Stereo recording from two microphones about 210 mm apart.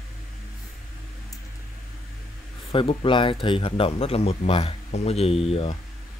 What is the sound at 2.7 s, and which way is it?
Speech, 25° left (ahead or behind).